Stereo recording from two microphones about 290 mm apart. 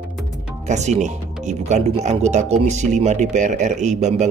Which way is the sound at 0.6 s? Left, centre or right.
Right.